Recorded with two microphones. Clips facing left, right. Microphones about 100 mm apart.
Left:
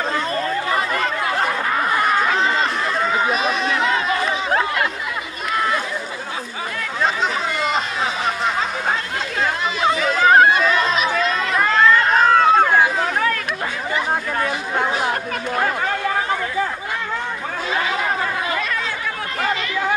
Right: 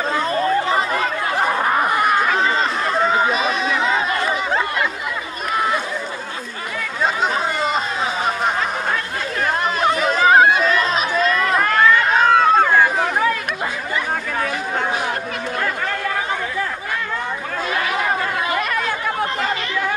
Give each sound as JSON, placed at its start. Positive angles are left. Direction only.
{"t": 0.3, "sound": "chatter", "side_deg": -25}
{"t": 0.9, "sound": "a sound", "side_deg": -15}
{"t": 2.2, "sound": "chatter", "side_deg": -5}
{"t": 2.9, "sound": "chatter", "side_deg": -25}
{"t": 3.3, "sound": "chatter", "side_deg": 0}
{"t": 9.9, "sound": "chatter", "side_deg": -20}
{"t": 10.2, "sound": "chatter", "side_deg": -5}
{"t": 11.5, "sound": "run", "side_deg": -5}
{"t": 13.0, "sound": "chatter", "side_deg": -15}